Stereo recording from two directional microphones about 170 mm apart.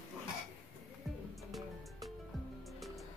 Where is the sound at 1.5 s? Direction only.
Centre (ahead or behind).